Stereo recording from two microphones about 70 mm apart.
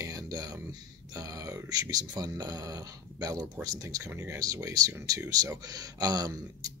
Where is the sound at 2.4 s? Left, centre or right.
Right.